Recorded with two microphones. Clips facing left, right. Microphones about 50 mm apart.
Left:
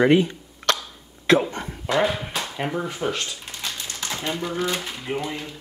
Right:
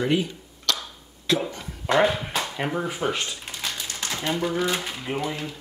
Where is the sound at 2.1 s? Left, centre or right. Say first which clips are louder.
Right 1 dB; centre.